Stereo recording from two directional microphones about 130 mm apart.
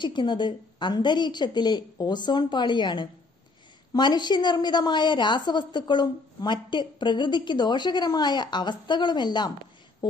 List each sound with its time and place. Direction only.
0.0 s a woman's voice: 35° left (ahead or behind)